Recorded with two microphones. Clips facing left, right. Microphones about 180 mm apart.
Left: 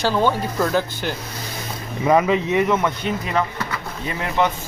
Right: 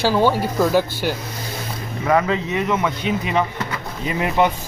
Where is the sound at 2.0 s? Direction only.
15° left (ahead or behind).